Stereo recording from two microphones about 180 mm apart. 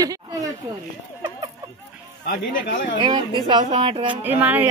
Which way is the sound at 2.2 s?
55° left (ahead or behind).